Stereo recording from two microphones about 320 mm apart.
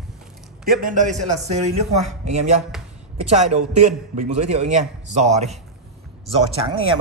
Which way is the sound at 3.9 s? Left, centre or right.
Right.